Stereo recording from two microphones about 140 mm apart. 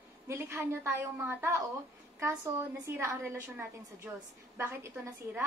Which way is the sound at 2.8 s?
20° right (ahead or behind).